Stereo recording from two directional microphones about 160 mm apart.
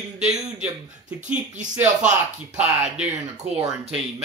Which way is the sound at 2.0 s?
45° right (ahead or behind).